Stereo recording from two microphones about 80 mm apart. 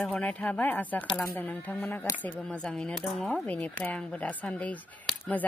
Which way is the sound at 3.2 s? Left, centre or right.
Centre.